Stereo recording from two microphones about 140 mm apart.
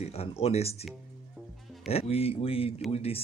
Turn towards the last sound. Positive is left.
turn(degrees=45)  # may be behind; listen again after turning